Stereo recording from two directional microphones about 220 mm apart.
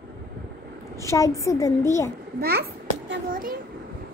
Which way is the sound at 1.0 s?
15° left (ahead or behind).